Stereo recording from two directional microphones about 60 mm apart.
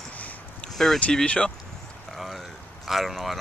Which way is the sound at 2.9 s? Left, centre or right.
Centre.